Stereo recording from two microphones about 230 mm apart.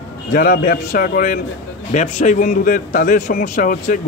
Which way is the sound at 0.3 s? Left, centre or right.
Left.